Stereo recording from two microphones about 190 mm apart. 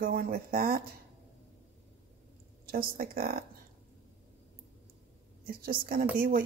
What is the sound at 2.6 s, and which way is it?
Speech, 50° right (ahead or behind).